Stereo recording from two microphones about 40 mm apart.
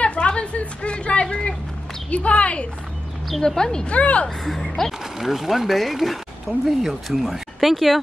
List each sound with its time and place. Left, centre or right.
0.0 s a woman's voice: left
3.4 s speech: centre
3.8 s speech: left
4.5 s speech: centre
5.2 s speech: centre